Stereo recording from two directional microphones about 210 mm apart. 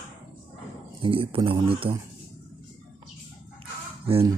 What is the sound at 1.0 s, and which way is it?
Speech, 25° right (ahead or behind).